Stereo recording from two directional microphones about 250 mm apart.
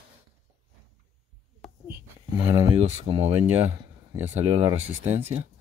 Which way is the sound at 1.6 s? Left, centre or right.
Centre.